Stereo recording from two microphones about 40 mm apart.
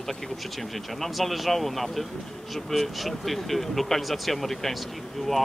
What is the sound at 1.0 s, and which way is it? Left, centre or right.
Speech, centre.